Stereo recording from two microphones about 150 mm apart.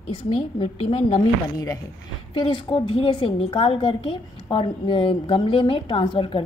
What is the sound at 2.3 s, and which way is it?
A woman's voice, 35° left (ahead or behind).